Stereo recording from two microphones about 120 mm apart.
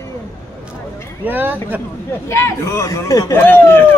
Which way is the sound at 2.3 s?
20° left (ahead or behind).